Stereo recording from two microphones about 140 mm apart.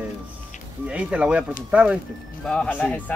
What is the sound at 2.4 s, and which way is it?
Speech, 10° left (ahead or behind).